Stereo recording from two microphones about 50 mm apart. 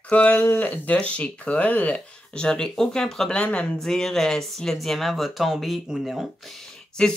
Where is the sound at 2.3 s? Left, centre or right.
Centre.